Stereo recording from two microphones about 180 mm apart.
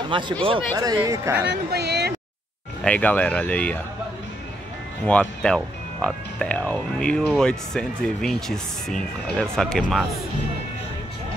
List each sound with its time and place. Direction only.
0.1 s speech: 25° right (ahead or behind)
1.5 s speech: 65° right (ahead or behind)
2.8 s speech: 5° left (ahead or behind)
5.0 s speech: 5° left (ahead or behind)